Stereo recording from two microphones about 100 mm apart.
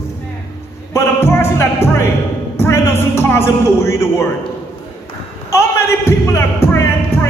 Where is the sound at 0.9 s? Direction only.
25° left (ahead or behind).